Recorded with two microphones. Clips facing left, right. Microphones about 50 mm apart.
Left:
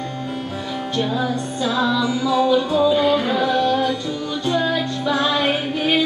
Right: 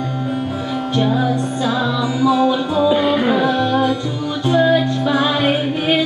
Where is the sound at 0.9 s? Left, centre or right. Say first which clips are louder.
Right 4 dB; centre.